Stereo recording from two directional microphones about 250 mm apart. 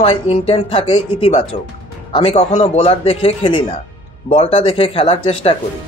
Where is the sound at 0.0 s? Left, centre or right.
Left.